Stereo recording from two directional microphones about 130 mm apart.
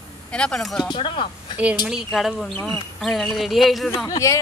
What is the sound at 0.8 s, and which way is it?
Speech, 40° left (ahead or behind).